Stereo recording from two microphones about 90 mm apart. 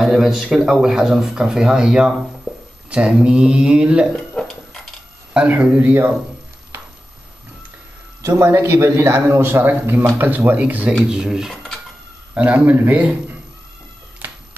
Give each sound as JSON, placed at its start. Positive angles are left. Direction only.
{"t": 0.0, "sound": "speech", "side_deg": -5}
{"t": 2.5, "sound": "a sound", "side_deg": -5}
{"t": 2.9, "sound": "speech", "side_deg": -10}
{"t": 4.3, "sound": "a sound", "side_deg": 5}
{"t": 5.3, "sound": "speech", "side_deg": -15}
{"t": 8.2, "sound": "a man's voice", "side_deg": -35}
{"t": 11.5, "sound": "dishes", "side_deg": 5}
{"t": 12.4, "sound": "speech", "side_deg": -15}